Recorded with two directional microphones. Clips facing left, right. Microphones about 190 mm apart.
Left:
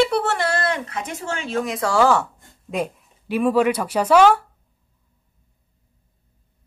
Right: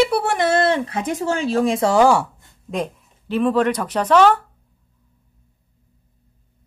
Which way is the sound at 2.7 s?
10° left (ahead or behind).